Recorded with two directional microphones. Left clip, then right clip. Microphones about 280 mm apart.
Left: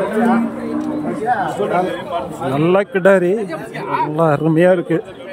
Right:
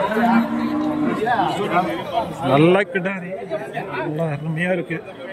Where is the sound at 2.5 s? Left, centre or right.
Centre.